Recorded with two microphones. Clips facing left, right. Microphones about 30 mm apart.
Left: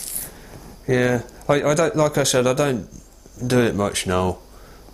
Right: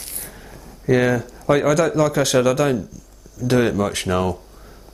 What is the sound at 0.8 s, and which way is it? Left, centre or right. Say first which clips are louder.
Speech: right 2 dB; centre.